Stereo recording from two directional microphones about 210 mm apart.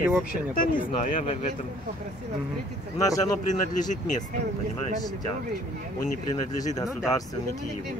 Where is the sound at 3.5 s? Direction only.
35° left (ahead or behind).